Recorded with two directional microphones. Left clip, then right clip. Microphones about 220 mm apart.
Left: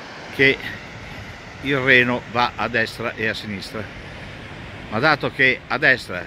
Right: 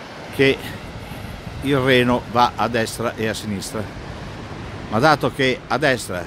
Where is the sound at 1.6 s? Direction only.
5° right (ahead or behind).